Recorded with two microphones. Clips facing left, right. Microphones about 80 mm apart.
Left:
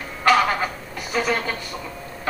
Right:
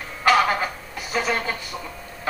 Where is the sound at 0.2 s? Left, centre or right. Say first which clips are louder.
Left 1 dB; centre.